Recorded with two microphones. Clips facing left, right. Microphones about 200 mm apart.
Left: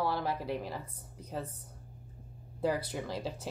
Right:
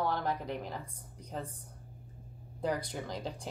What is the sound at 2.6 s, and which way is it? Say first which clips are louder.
Speech: left 2 dB; 5° left (ahead or behind).